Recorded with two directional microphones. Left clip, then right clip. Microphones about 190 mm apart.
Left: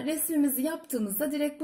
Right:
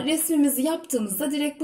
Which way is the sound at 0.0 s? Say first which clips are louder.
Right 6 dB; 10° left (ahead or behind).